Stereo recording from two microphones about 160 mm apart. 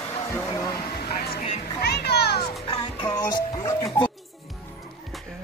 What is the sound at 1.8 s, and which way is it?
Speech, 90° left.